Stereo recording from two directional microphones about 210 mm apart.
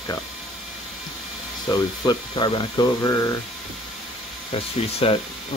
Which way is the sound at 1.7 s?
20° left (ahead or behind).